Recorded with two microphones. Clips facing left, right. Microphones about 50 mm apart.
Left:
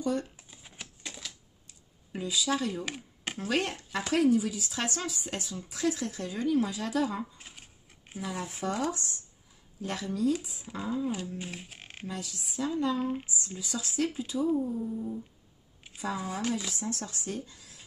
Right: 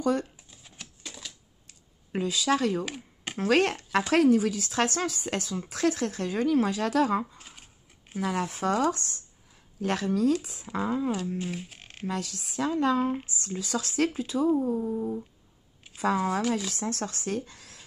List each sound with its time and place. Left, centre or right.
0.2 s shuffling cards: centre
1.7 s a sound: right
2.8 s a sound: centre
3.3 s speech: right
7.3 s scissors: centre
8.2 s speech: right
11.1 s speech: centre
12.1 s speech: right